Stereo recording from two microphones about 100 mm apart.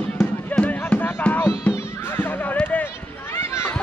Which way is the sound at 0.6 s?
15° left (ahead or behind).